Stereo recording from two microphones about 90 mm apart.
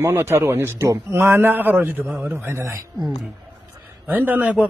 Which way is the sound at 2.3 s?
30° right (ahead or behind).